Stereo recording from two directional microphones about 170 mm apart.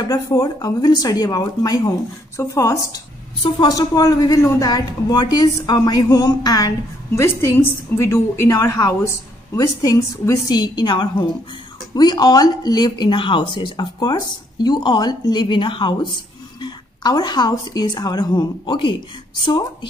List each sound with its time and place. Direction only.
0.1 s a woman's voice: 20° left (ahead or behind)